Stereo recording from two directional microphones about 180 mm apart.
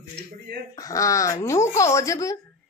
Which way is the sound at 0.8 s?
20° left (ahead or behind).